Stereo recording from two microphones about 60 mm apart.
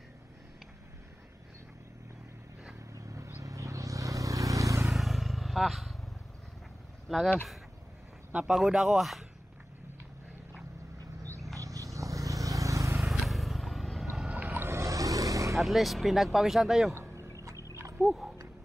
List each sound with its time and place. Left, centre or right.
2.9 s vehicle: right
4.9 s vehicle: centre
7.1 s speech: centre
8.5 s speech: centre
11.5 s vehicle: right
12.9 s vehicle: centre
14.3 s boat: right
14.6 s vehicle: right
15.6 s speech: centre
16.9 s a sound: right
18.0 s speech: centre